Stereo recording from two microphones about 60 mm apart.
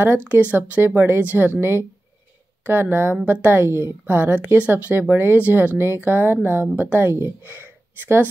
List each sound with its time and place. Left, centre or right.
0.0 s speech: right
3.3 s speech: right
3.5 s speech: right
4.6 s speech: right